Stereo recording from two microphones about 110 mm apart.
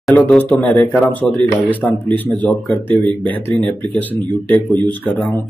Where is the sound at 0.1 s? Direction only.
15° left (ahead or behind).